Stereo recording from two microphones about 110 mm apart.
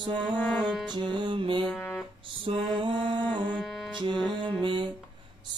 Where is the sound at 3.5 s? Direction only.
Centre (ahead or behind).